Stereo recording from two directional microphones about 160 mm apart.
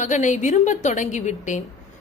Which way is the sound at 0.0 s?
50° left (ahead or behind).